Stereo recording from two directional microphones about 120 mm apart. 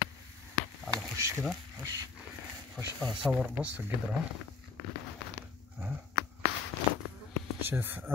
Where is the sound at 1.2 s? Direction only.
25° right (ahead or behind).